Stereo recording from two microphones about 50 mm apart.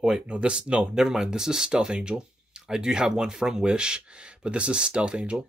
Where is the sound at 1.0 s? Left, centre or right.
Centre.